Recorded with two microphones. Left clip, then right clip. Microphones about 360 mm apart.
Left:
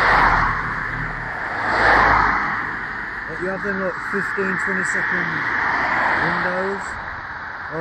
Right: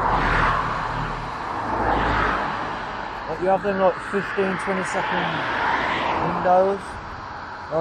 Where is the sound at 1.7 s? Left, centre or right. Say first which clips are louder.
Left 8 dB; left.